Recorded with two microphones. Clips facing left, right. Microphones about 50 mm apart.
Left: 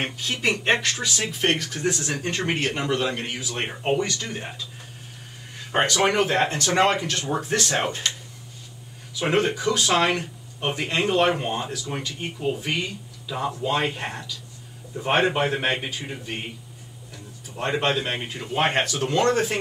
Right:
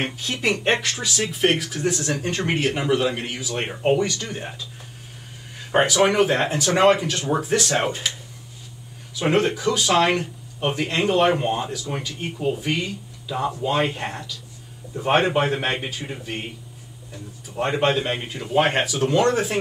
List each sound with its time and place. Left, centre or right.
0.4 s speech: centre
2.0 s speech: centre
2.2 s speech: centre
5.7 s speech: centre
9.2 s speech: centre
17.6 s speech: centre